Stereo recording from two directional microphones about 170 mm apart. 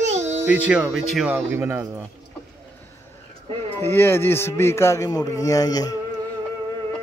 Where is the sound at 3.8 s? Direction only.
15° left (ahead or behind).